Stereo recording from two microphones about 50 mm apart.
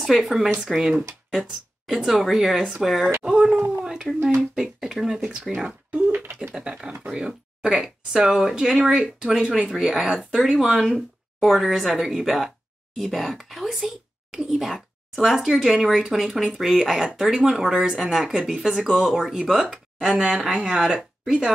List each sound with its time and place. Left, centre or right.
0.0 s speech: centre
3.8 s a sound: centre
4.7 s speech: centre
5.9 s a sound: right
6.1 s beatboxing: right
6.5 s speech: centre
10.0 s speech: centre